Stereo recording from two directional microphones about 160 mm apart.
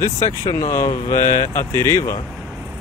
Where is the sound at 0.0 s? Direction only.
25° left (ahead or behind).